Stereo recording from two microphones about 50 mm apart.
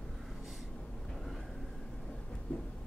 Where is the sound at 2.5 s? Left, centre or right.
Left.